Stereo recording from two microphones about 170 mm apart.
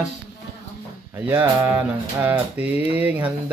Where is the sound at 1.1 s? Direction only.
10° right (ahead or behind).